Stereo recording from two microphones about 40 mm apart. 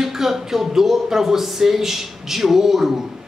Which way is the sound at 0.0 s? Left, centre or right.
Centre.